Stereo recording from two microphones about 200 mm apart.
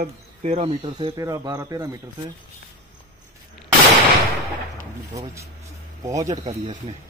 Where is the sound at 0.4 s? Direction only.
30° right (ahead or behind); by 2.0 s 15° right (ahead or behind).